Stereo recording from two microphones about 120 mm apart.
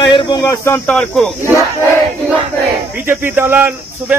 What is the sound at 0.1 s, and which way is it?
Snake, 40° left (ahead or behind).